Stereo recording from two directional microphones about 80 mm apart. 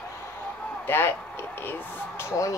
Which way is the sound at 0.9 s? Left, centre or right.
Left.